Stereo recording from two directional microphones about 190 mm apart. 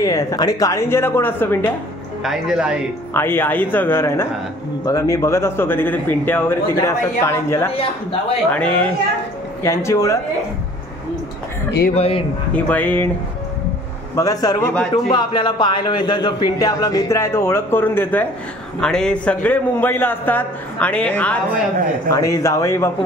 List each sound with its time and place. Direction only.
0.0 s speech: 15° left (ahead or behind)
2.2 s speech: 5° right (ahead or behind)
3.1 s speech: 10° left (ahead or behind)
7.7 s a man's voice: 30° left (ahead or behind)
8.5 s speech: 5° left (ahead or behind)
11.9 s speech: 30° left (ahead or behind)
12.5 s speech: 10° left (ahead or behind)
14.1 s a man's voice: 20° left (ahead or behind)